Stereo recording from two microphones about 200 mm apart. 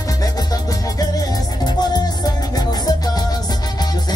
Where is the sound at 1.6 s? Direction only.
20° left (ahead or behind).